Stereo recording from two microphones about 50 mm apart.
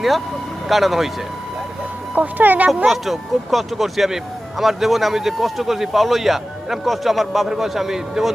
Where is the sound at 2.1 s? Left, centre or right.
Right.